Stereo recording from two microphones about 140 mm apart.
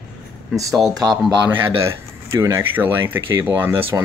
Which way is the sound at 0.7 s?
Centre (ahead or behind).